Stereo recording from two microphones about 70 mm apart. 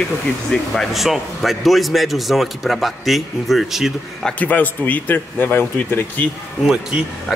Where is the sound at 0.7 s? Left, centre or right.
Centre.